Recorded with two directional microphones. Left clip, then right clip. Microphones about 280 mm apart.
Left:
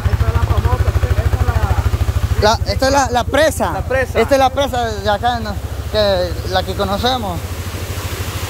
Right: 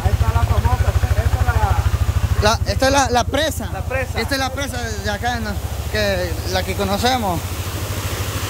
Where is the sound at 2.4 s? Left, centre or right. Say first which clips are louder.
Left 3 dB; centre.